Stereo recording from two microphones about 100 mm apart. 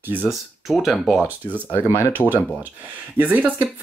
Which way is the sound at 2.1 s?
20° right (ahead or behind).